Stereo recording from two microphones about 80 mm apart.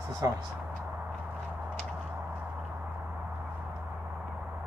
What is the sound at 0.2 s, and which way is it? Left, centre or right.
Speech, right.